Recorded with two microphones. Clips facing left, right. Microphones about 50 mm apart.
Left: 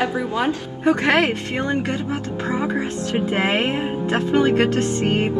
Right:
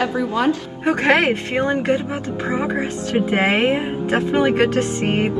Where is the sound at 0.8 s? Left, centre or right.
Right.